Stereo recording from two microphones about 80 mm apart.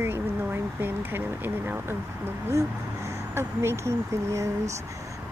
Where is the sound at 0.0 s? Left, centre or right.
Right.